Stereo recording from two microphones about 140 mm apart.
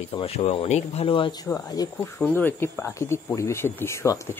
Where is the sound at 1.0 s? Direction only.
35° left (ahead or behind).